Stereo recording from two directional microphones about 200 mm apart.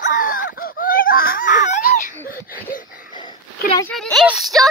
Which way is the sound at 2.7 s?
45° left (ahead or behind).